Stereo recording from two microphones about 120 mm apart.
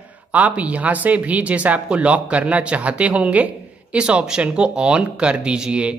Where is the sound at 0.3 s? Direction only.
10° right (ahead or behind).